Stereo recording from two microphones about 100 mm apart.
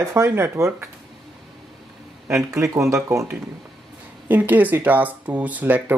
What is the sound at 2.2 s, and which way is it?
Speech, 25° right (ahead or behind).